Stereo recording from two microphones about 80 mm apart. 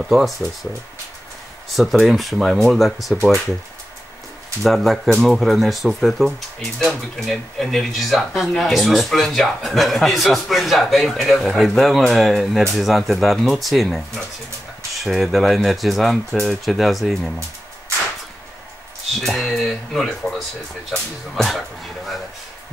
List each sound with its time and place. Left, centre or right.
0.1 s speech: centre
1.8 s speech: centre
4.6 s speech: centre
19.2 s speech: centre